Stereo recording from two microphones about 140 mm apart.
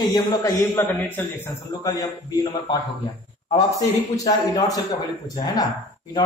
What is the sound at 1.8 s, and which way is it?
Speech, 25° left (ahead or behind).